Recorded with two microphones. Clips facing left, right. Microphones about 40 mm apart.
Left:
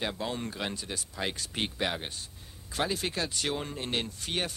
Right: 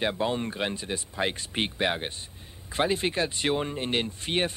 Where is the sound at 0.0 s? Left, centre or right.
Right.